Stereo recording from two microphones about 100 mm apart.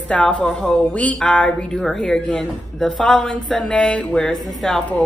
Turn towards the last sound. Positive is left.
turn(degrees=5)  # may be behind; listen again after turning